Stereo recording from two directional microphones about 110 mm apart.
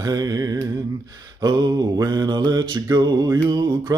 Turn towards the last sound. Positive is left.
turn(degrees=-40)  # may be behind; listen again after turning